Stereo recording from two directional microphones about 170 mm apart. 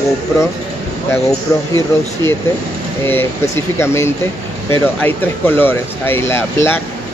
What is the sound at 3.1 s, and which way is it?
Speech, 15° left (ahead or behind).